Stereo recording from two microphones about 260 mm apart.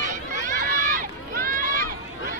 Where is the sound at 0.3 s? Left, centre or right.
Right.